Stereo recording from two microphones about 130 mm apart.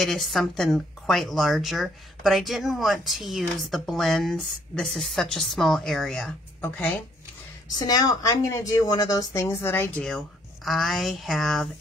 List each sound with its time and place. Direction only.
0.0 s speech: centre (ahead or behind)
7.8 s speech: 30° left (ahead or behind)
10.0 s speech: centre (ahead or behind)